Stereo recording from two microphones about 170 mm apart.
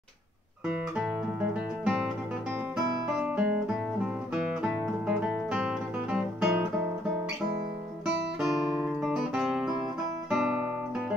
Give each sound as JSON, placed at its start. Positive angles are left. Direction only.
{"t": 0.7, "sound": "guitar", "side_deg": -5}
{"t": 3.2, "sound": "guitar", "side_deg": -5}
{"t": 4.3, "sound": "music", "side_deg": -5}
{"t": 8.4, "sound": "music", "side_deg": 0}